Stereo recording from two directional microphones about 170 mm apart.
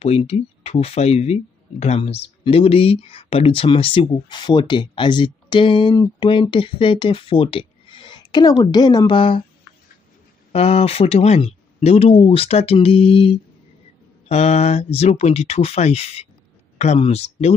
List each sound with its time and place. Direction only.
0.0 s speech: 40° left (ahead or behind)
10.5 s speech: 35° left (ahead or behind)